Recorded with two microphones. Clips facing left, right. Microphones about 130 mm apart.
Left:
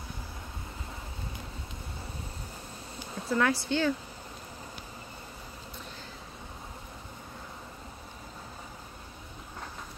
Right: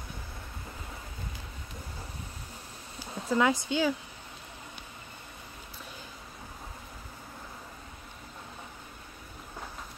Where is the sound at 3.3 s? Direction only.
20° right (ahead or behind).